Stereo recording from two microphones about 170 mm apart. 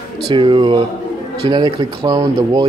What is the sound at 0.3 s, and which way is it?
Speech, 25° right (ahead or behind).